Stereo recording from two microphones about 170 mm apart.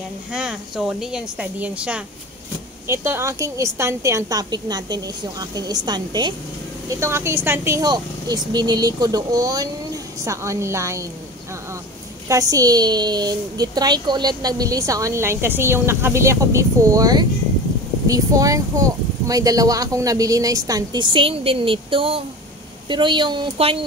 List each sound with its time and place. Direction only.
0.3 s a woman's voice: 5° right (ahead or behind)
12.3 s a woman's voice: 20° right (ahead or behind)